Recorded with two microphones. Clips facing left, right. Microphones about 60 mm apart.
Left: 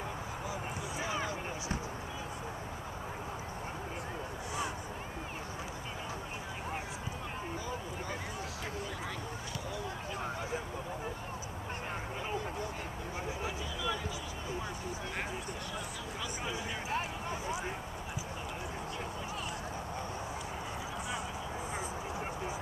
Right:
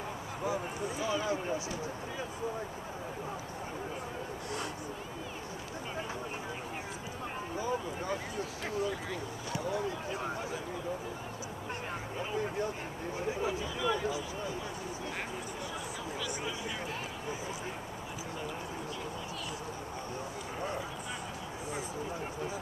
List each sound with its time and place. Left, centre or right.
0.9 s speech: left
13.8 s speech: centre